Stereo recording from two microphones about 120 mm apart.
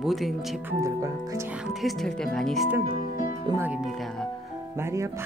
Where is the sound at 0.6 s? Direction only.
20° right (ahead or behind).